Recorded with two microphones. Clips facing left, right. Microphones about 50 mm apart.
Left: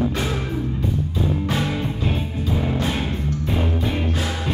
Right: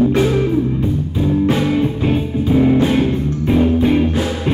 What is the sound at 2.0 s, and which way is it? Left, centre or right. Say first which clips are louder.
Music: right 8 dB; right.